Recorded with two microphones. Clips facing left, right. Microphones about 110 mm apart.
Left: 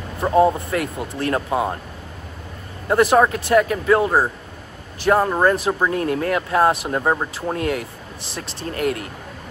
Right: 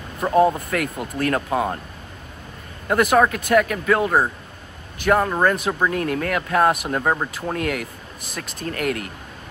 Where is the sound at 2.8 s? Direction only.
30° left (ahead or behind).